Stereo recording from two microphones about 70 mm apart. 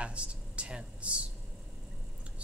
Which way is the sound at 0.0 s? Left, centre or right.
Centre.